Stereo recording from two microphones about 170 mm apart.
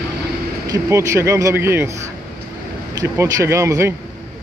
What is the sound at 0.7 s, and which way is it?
Speech, 20° right (ahead or behind).